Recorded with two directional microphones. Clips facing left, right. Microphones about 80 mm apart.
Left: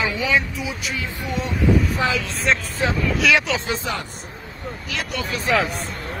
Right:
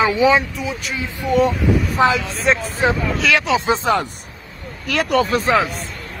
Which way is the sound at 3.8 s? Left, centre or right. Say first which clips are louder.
Right 13 dB; right.